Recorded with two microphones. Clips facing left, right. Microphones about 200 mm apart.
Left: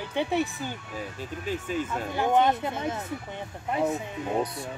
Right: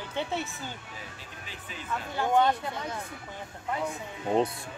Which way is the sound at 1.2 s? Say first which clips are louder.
Left 13 dB; 45° left (ahead or behind).